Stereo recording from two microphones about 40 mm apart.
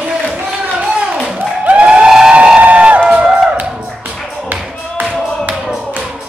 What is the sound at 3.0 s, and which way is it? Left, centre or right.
Music, right.